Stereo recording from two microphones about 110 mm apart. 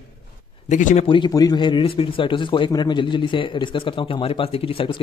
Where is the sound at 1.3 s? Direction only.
35° left (ahead or behind).